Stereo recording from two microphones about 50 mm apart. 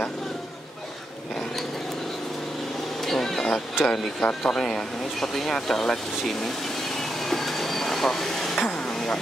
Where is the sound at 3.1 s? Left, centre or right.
Centre.